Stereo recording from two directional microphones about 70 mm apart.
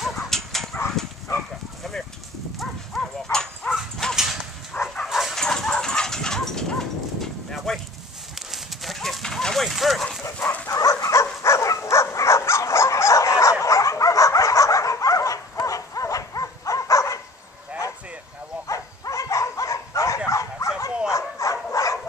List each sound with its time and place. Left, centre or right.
0.0 s dog: centre
1.8 s a sound: centre
2.6 s livestock: centre
4.1 s dog: centre
5.4 s a sound: centre
8.5 s clip-clop: centre
10.4 s dog: centre
10.7 s dog: left
18.7 s dog: left
20.2 s bow-wow: left
21.8 s dog: left